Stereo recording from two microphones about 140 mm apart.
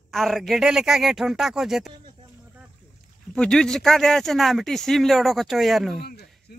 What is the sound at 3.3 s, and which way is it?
Speech, 5° left (ahead or behind).